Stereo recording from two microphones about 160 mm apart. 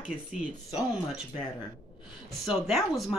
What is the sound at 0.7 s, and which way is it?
Speech, 5° right (ahead or behind).